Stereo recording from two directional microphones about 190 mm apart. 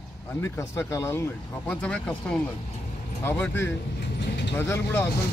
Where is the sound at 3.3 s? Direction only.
10° left (ahead or behind).